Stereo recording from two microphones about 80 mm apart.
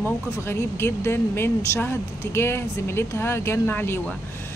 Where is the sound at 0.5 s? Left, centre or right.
Left.